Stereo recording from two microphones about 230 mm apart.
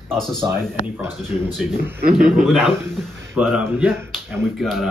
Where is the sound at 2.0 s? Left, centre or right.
Right.